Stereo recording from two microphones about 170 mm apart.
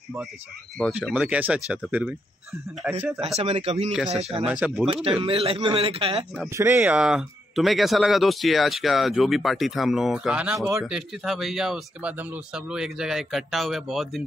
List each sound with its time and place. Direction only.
0.7 s speech: centre (ahead or behind)
3.3 s a man's voice: 35° right (ahead or behind)
4.5 s speech: 5° right (ahead or behind)
5.2 s a man's voice: 35° right (ahead or behind)
6.5 s speech: 15° right (ahead or behind)